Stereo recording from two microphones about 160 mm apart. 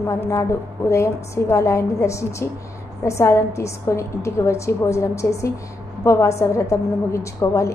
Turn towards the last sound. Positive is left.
turn(degrees=20)  # may be behind; listen again after turning